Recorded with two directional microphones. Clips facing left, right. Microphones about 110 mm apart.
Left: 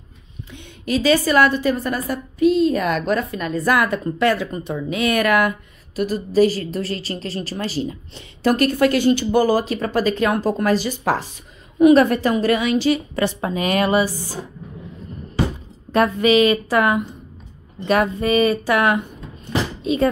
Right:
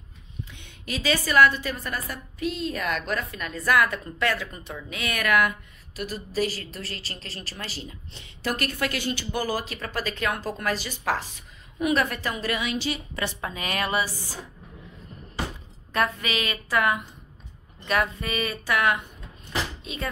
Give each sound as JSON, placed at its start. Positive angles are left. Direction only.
{"t": 0.5, "sound": "a woman's voice", "side_deg": 35}
{"t": 13.2, "sound": "a woman's voice", "side_deg": 30}
{"t": 15.9, "sound": "a woman's voice", "side_deg": 25}